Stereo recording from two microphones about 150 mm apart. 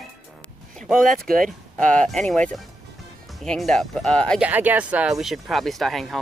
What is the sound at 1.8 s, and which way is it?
Mantra, 5° left (ahead or behind).